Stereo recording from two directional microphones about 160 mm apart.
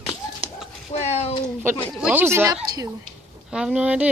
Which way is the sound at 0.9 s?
40° left (ahead or behind).